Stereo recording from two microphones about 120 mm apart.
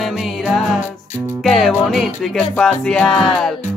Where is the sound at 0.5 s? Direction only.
Centre (ahead or behind).